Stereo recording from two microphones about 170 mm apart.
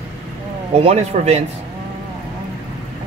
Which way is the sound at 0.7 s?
40° right (ahead or behind).